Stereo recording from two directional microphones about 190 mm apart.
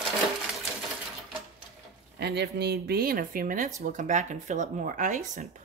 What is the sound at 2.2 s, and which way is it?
Speech, 60° right (ahead or behind).